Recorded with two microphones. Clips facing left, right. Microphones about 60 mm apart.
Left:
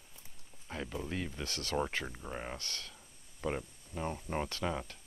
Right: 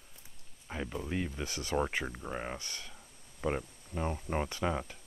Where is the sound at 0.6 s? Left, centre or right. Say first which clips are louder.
Right 2 dB; centre.